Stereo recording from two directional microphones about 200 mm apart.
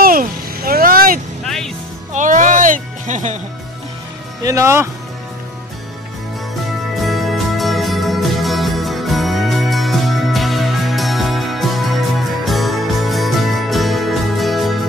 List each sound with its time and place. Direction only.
0.0 s vehicle: 45° right (ahead or behind)
1.4 s music: centre (ahead or behind)
2.1 s music: 40° right (ahead or behind)
4.5 s speech: 15° right (ahead or behind)
7.0 s music: centre (ahead or behind)